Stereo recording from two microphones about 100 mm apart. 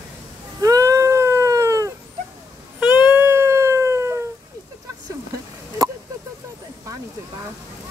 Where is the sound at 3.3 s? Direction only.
25° right (ahead or behind).